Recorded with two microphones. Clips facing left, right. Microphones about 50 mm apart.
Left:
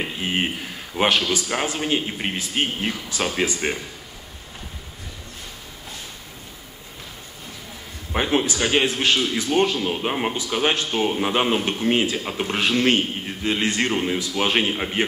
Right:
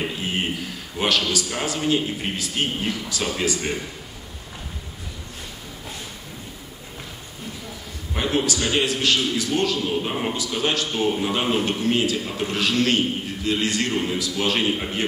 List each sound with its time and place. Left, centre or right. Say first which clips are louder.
0.9 s a man's voice: left 2 dB; left
8.1 s a man's voice: left 2 dB; left